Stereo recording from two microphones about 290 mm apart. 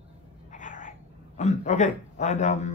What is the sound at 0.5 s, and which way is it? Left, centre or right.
Cat, left.